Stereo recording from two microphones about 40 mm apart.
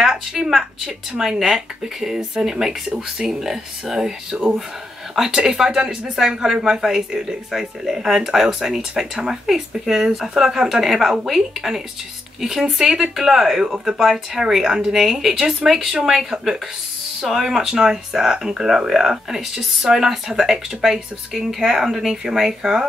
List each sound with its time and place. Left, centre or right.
0.1 s a woman's voice: centre
4.3 s speech: right
5.1 s speech: centre